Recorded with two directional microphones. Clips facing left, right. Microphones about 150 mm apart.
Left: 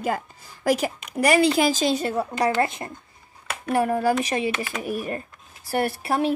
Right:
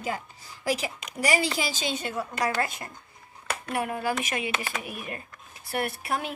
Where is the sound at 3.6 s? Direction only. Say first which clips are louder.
Left 8 dB; 40° left (ahead or behind).